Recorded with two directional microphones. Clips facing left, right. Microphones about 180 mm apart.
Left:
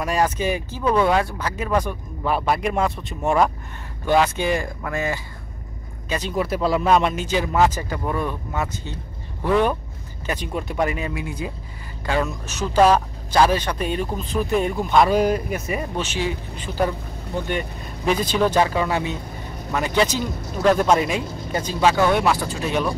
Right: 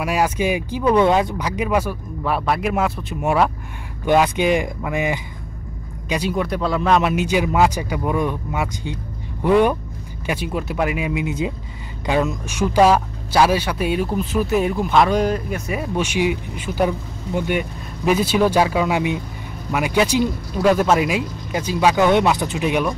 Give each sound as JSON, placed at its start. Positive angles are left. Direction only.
{"t": 0.0, "sound": "speech", "side_deg": -10}
{"t": 4.0, "sound": "speech", "side_deg": -15}
{"t": 6.3, "sound": "speech", "side_deg": 5}
{"t": 16.0, "sound": "speech", "side_deg": -15}